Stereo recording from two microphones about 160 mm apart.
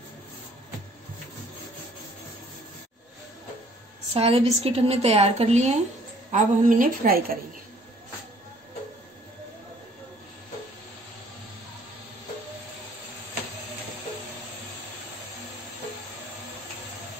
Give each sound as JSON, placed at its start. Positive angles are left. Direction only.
{"t": 4.1, "sound": "a woman's voice", "side_deg": -40}
{"t": 6.3, "sound": "a woman's voice", "side_deg": -60}